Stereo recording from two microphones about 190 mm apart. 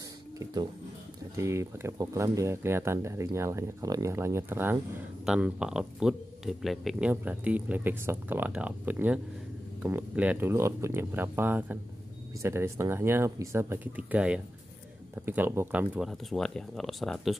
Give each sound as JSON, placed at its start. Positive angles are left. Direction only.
{"t": 1.3, "sound": "speech", "side_deg": -15}